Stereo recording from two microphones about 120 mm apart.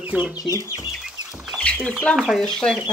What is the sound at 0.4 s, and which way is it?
Speech, 30° left (ahead or behind).